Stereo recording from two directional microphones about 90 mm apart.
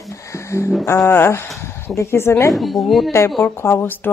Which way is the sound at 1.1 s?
25° left (ahead or behind).